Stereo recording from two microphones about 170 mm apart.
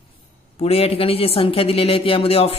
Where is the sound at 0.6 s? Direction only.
35° left (ahead or behind).